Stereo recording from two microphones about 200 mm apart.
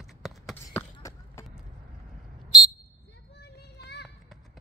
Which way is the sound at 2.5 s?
Centre (ahead or behind).